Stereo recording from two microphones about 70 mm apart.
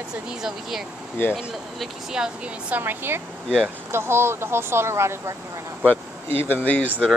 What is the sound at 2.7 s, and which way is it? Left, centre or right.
Speech, right.